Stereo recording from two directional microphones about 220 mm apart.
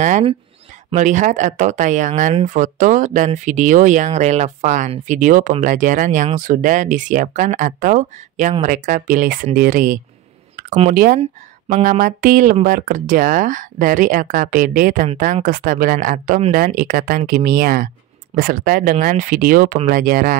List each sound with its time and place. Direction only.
0.0 s speech: 30° right (ahead or behind)